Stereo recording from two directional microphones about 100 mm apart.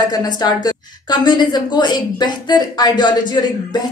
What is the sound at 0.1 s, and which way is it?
A woman's voice, 45° left (ahead or behind).